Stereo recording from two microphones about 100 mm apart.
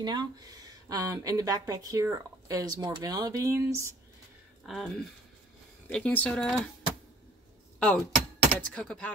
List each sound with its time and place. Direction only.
0.0 s speech: 45° right (ahead or behind)
4.6 s speech: 5° left (ahead or behind)
7.8 s speech: 10° left (ahead or behind)